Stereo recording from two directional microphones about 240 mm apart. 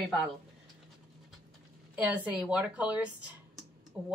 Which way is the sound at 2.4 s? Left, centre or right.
Centre.